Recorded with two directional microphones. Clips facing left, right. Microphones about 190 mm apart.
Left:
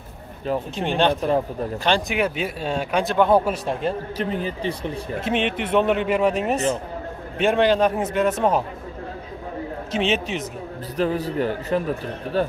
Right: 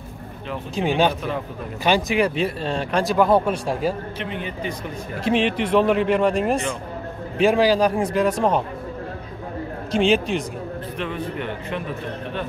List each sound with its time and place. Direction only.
0.7 s speech: 5° right (ahead or behind)
4.2 s speech: 35° left (ahead or behind)
5.2 s speech: centre (ahead or behind)
9.8 s speech: centre (ahead or behind)
11.0 s speech: 35° left (ahead or behind)